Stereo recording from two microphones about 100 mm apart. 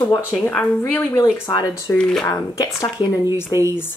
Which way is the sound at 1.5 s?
40° left (ahead or behind).